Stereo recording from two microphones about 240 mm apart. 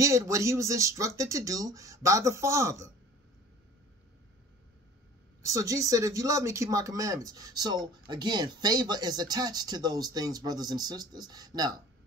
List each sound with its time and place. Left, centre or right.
0.0 s speech: centre
5.4 s speech: centre